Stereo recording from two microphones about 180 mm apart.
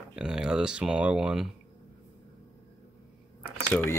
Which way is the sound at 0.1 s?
5° right (ahead or behind).